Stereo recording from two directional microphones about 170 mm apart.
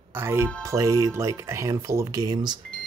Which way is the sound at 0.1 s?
15° right (ahead or behind).